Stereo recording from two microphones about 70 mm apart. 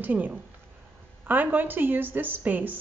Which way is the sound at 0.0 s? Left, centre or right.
Right.